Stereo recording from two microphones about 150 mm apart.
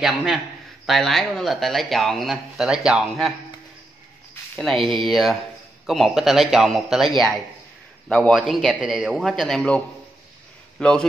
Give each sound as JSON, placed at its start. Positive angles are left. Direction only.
{"t": 0.0, "sound": "speech", "side_deg": -5}
{"t": 4.6, "sound": "speech", "side_deg": 0}